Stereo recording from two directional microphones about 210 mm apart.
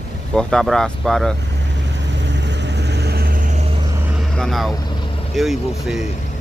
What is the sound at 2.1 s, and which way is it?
Vehicle, 55° right (ahead or behind).